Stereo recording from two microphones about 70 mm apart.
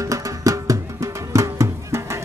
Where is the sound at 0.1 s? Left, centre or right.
Right.